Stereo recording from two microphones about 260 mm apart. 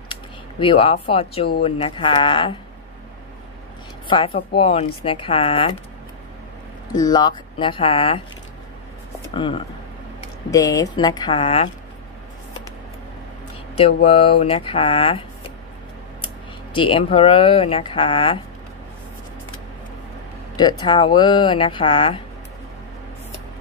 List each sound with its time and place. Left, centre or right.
0.1 s speech: centre
4.6 s speech: left
6.9 s speech: centre
9.3 s speech: centre
14.0 s speech: left
16.7 s speech: centre
20.5 s speech: centre